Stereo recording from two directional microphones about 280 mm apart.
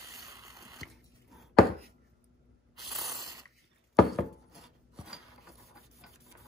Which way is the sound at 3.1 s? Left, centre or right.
Centre.